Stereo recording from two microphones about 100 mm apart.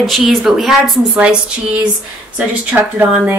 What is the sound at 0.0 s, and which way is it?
Speech, centre (ahead or behind).